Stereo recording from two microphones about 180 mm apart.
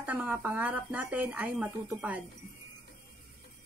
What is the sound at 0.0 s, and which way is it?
Speech, 10° right (ahead or behind).